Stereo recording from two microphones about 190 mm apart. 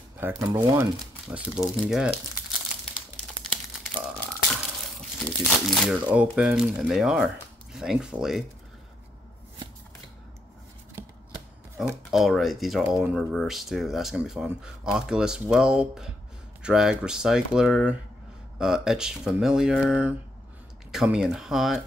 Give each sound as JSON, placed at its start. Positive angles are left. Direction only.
{"t": 0.2, "sound": "speech", "side_deg": -10}
{"t": 0.5, "sound": "speech", "side_deg": -20}
{"t": 1.3, "sound": "speech", "side_deg": -5}
{"t": 5.2, "sound": "speech", "side_deg": 0}
{"t": 11.7, "sound": "speech", "side_deg": -5}